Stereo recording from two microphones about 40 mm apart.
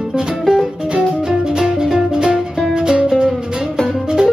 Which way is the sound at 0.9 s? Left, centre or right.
Centre.